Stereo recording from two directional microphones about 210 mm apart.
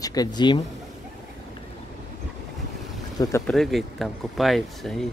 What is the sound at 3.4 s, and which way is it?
Speech, centre (ahead or behind).